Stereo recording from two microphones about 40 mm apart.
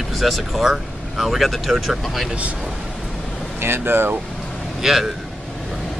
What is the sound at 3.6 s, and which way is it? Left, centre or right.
Speech, right.